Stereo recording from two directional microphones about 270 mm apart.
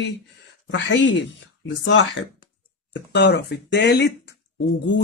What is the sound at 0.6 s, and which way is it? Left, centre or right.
Speech, left.